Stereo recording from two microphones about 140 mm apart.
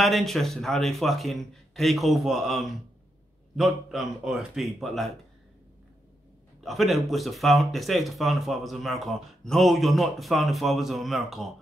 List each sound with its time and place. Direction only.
0.0 s speech: centre (ahead or behind)
6.6 s speech: centre (ahead or behind)